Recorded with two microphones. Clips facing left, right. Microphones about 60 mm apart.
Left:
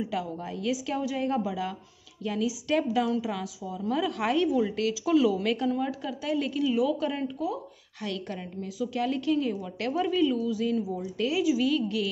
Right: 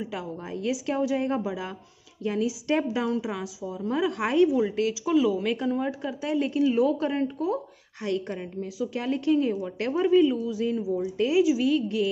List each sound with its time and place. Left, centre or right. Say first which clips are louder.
0.0 s a woman's voice: left 2 dB; right
8.0 s a woman's voice: right 5 dB; right